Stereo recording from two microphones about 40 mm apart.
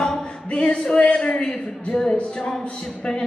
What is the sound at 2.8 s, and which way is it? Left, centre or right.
Speech, centre.